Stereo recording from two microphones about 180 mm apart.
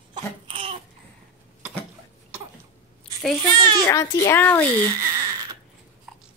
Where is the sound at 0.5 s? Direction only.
30° right (ahead or behind).